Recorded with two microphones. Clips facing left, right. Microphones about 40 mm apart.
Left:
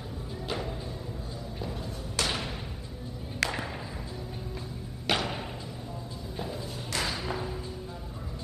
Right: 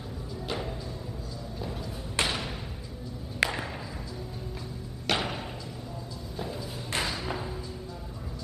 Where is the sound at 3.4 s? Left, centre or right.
Centre.